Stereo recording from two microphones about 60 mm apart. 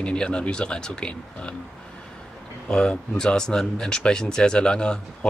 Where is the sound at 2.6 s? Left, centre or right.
Centre.